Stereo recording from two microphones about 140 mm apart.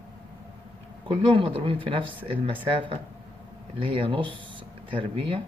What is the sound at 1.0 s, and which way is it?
Speech, 40° right (ahead or behind).